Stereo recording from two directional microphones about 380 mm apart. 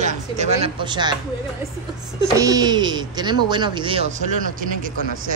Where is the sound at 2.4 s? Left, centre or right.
Centre.